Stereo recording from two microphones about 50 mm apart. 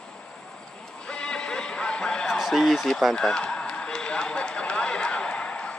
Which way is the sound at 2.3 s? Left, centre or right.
Centre.